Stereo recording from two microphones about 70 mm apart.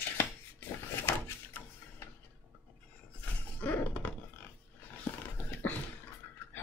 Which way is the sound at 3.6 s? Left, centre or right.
Left.